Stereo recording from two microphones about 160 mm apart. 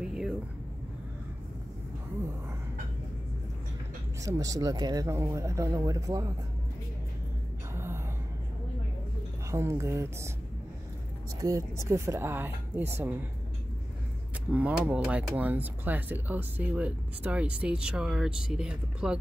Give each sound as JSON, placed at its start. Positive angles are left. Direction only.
{"t": 0.0, "sound": "vehicle", "side_deg": -5}
{"t": 4.2, "sound": "speech", "side_deg": -20}
{"t": 7.7, "sound": "gasp", "side_deg": -15}
{"t": 9.5, "sound": "speech", "side_deg": -20}
{"t": 11.3, "sound": "speech", "side_deg": -20}
{"t": 14.5, "sound": "speech", "side_deg": -10}